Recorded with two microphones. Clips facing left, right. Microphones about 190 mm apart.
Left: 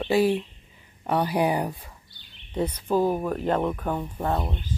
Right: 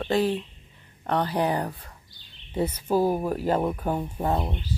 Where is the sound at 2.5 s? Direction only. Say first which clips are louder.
Even; 5° right (ahead or behind).